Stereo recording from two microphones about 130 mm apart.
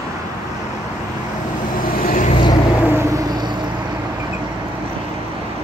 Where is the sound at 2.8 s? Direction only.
20° right (ahead or behind).